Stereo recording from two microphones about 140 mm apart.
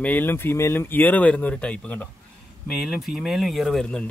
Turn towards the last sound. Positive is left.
turn(degrees=5)  # may be behind; listen again after turning